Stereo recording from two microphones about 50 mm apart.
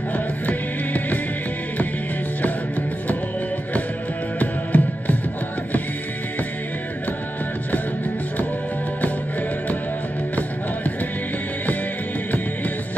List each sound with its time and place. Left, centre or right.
0.1 s music: left
4.4 s music: left